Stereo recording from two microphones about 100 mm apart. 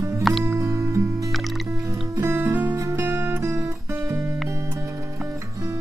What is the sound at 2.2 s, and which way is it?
Music, 20° right (ahead or behind).